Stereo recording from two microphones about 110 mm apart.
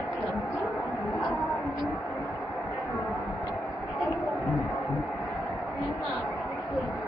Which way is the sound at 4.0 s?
Centre (ahead or behind).